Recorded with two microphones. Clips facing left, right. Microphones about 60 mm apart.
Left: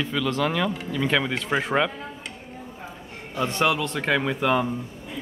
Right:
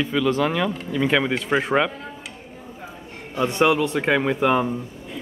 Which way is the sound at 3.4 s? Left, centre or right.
Centre.